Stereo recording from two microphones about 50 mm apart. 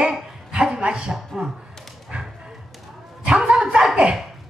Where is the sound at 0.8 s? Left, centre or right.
Centre.